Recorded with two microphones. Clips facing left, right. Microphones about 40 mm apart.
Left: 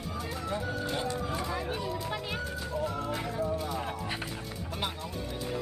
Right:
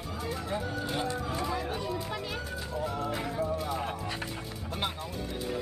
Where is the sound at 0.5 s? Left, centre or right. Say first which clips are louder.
Left 1 dB; centre.